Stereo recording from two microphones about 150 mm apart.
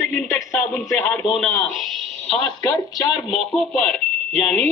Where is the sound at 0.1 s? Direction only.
5° left (ahead or behind).